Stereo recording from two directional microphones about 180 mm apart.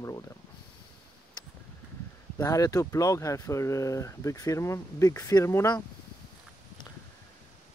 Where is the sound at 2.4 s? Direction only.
20° left (ahead or behind).